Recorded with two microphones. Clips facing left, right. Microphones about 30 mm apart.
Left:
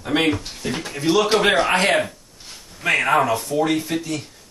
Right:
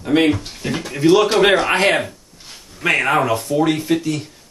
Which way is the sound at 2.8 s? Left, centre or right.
Right.